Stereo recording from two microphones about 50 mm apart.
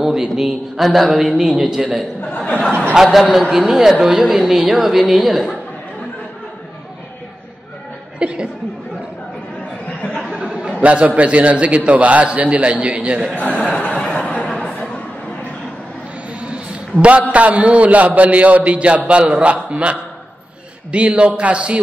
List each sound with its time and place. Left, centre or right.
0.0 s a man's voice: centre
2.3 s speech: left
2.9 s a man's voice: centre
8.2 s a man's voice: right
10.4 s a sound: centre
10.8 s a man's voice: right
13.3 s speech: left
13.6 s a sound: left
16.3 s a sound: right
17.3 s a man's voice: right